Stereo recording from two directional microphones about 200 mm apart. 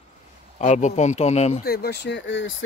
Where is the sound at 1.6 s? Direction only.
50° left (ahead or behind).